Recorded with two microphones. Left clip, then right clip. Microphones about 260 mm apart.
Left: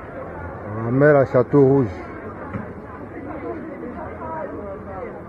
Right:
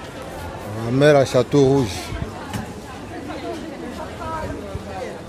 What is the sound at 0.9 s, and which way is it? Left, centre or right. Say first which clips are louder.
Speech: even; right.